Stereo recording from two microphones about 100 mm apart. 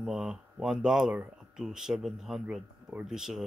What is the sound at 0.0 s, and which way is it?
Speech, 5° right (ahead or behind).